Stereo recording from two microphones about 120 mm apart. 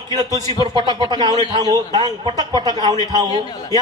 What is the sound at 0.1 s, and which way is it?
A man's voice, 35° right (ahead or behind).